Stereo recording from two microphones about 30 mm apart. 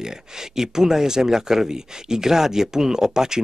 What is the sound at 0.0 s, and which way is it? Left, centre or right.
Speech, centre.